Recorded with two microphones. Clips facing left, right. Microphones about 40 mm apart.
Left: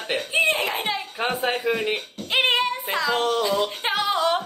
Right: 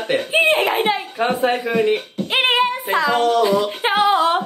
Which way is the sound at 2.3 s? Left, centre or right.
Right.